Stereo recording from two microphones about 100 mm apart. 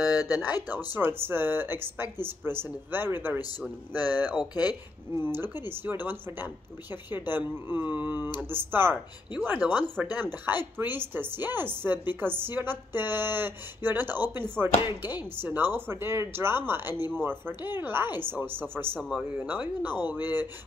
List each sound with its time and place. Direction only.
0.0 s speech: 35° left (ahead or behind)
0.6 s speech: 20° right (ahead or behind)
4.3 s speech: 45° left (ahead or behind)
5.2 s speech: 20° right (ahead or behind)